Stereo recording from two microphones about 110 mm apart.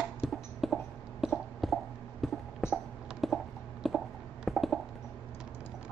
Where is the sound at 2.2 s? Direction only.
Centre (ahead or behind).